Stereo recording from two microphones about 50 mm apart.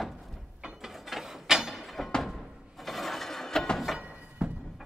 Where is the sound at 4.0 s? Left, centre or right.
Right.